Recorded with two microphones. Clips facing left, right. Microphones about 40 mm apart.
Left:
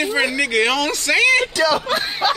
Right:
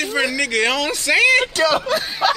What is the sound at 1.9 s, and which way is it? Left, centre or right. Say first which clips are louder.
Speech: even; left.